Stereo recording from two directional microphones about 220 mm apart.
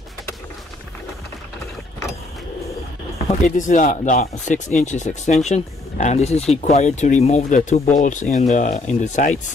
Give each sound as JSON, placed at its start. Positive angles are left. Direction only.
{"t": 3.4, "sound": "speech", "side_deg": 35}